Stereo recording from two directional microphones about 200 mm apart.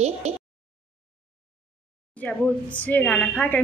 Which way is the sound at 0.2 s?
35° right (ahead or behind).